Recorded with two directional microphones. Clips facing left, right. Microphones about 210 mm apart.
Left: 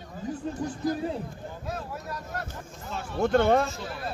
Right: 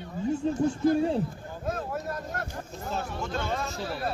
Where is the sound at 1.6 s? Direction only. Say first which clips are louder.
Right 6 dB; 50° right (ahead or behind).